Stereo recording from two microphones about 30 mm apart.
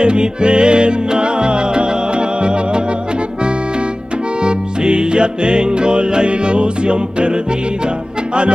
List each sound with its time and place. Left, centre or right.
0.0 s music: right
4.4 s music: right